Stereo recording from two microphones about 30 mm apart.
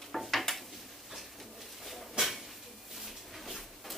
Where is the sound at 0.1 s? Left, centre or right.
Centre.